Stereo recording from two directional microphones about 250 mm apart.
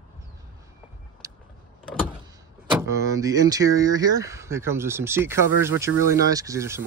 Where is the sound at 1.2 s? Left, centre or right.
Centre.